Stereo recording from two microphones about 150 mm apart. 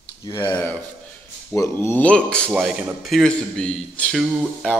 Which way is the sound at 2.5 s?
5° right (ahead or behind).